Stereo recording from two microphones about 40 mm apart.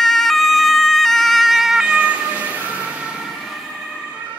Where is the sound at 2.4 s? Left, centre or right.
Right.